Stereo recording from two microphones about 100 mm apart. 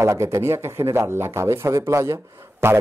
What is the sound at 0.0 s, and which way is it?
Speech, 30° right (ahead or behind).